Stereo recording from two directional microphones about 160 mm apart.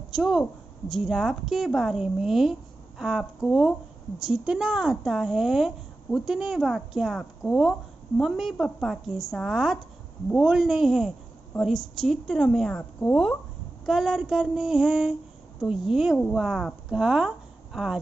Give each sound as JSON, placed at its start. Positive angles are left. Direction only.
{"t": 0.1, "sound": "a woman's voice", "side_deg": -5}